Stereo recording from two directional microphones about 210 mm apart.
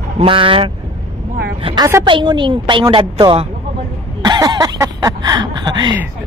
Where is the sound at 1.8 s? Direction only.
15° right (ahead or behind).